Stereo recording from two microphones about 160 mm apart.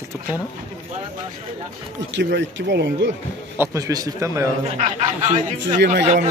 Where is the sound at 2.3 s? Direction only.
90° right.